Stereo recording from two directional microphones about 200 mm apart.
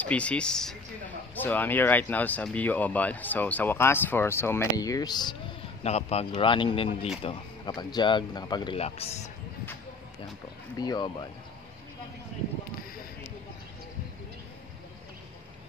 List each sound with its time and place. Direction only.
0.0 s speech: 5° left (ahead or behind)
5.9 s speech: 30° left (ahead or behind)
10.8 s speech: 20° left (ahead or behind)